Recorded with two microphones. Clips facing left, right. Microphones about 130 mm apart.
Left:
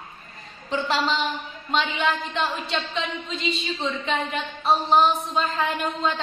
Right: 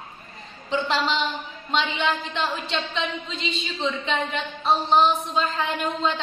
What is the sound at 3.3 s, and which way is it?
A woman's voice, 5° left (ahead or behind).